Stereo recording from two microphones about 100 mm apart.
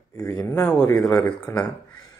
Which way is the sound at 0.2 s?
35° left (ahead or behind).